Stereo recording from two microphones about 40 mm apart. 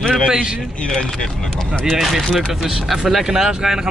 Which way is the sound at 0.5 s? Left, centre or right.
Centre.